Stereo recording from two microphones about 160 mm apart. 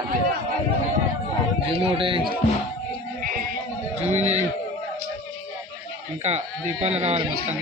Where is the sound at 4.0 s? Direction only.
45° right (ahead or behind).